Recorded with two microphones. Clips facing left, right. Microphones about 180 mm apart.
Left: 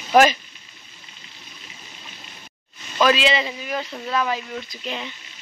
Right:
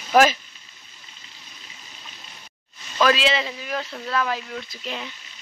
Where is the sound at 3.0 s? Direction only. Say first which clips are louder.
Left 1 dB; centre (ahead or behind).